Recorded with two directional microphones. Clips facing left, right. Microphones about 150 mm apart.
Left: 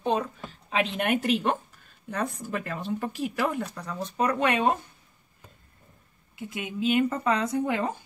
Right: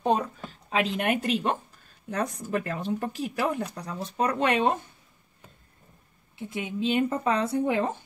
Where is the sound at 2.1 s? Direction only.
40° right (ahead or behind).